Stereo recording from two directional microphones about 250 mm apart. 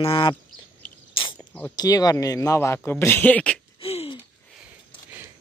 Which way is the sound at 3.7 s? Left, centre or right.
Left.